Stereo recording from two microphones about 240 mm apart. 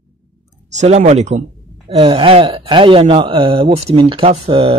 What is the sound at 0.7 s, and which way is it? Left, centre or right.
Speech, right.